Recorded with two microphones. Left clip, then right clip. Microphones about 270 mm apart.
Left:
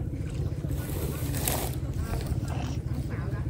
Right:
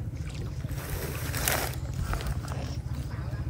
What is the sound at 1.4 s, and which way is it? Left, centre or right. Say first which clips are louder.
Boat: right 4 dB; right.